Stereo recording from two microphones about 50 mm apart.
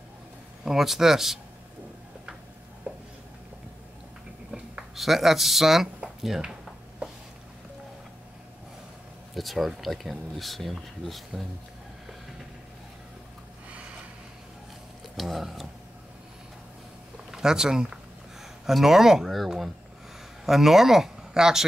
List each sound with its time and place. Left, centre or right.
0.7 s speech: centre
2.9 s a sound: right
4.9 s speech: centre
9.3 s speech: centre
15.1 s a sound: centre
17.3 s speech: centre